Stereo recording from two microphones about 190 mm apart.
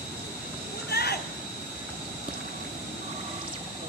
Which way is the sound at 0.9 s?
55° left (ahead or behind).